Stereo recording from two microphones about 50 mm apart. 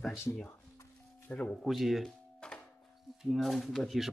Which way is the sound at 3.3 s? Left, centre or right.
Centre.